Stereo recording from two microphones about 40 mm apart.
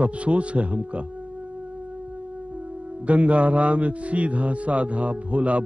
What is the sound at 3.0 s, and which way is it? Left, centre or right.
A man's voice, right.